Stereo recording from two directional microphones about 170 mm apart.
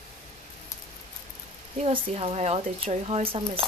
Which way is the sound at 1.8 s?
40° right (ahead or behind).